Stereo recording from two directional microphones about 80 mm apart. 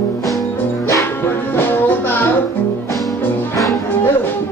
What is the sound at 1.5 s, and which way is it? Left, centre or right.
Music, left.